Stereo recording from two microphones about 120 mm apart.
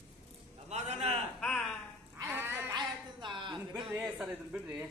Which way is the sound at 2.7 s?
40° right (ahead or behind).